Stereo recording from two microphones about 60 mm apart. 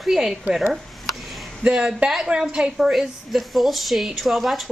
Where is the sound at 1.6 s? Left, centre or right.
Centre.